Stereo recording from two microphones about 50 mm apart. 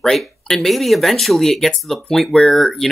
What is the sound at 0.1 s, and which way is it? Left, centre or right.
Speech, centre.